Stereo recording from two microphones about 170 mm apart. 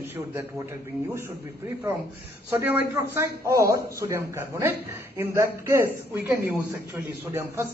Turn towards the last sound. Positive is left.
turn(degrees=-15)  # may be behind; listen again after turning